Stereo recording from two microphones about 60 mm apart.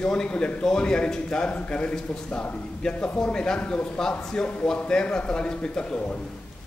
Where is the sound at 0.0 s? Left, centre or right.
Centre.